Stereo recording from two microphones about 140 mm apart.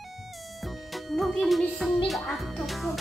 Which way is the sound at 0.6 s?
Centre (ahead or behind).